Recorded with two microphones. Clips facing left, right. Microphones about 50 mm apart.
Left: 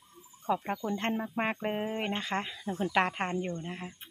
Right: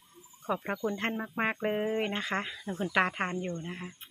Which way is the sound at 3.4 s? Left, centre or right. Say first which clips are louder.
Even; centre.